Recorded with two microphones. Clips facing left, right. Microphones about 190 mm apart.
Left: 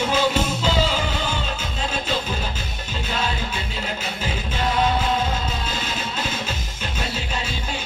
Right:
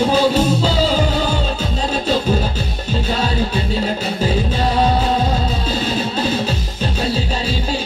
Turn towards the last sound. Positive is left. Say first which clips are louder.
# right 9 dB
turn(degrees=-35)  # may be behind; listen again after turning